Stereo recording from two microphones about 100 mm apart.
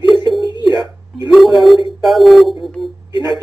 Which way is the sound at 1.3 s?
Centre (ahead or behind).